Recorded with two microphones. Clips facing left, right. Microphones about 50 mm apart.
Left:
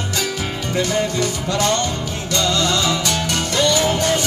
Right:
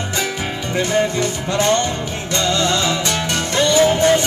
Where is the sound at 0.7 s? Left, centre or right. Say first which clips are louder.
Right 2 dB; right.